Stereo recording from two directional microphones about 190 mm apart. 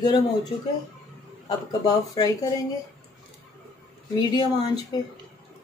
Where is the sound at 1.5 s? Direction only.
20° left (ahead or behind).